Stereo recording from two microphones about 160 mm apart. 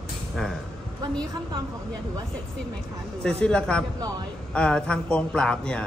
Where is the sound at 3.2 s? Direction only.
5° left (ahead or behind).